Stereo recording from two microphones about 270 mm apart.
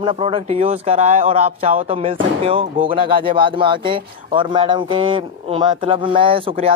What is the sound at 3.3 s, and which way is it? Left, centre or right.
Speech, centre.